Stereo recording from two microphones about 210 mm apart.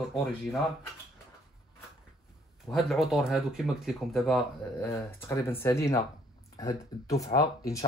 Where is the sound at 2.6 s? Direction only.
Centre (ahead or behind).